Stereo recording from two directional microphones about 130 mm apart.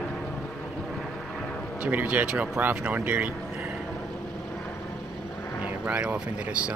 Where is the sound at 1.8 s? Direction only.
10° right (ahead or behind).